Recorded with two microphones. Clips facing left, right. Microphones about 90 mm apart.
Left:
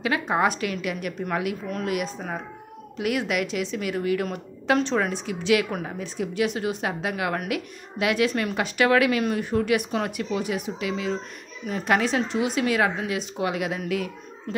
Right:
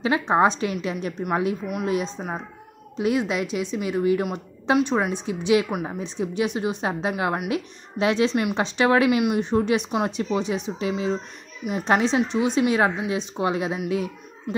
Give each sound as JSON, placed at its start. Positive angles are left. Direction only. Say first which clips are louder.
{"t": 0.0, "sound": "speech", "louder": "right 4 dB", "side_deg": -25}
{"t": 5.7, "sound": "a woman's voice", "louder": "right 3 dB", "side_deg": -10}
{"t": 5.9, "sound": "speech", "louder": "left 1 dB", "side_deg": -25}